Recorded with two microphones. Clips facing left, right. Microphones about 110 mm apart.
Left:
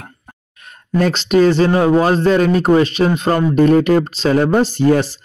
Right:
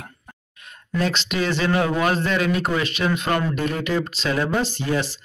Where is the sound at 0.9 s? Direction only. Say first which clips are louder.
Left 10 dB; 45° left (ahead or behind).